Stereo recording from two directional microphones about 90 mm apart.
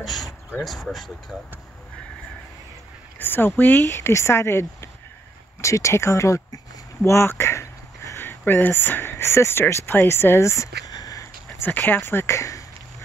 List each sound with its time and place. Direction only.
0.0 s speech: centre (ahead or behind)
3.2 s speech: 25° left (ahead or behind)
10.9 s a sound: 45° left (ahead or behind)
11.6 s speech: 20° left (ahead or behind); by 12.6 s 35° left (ahead or behind)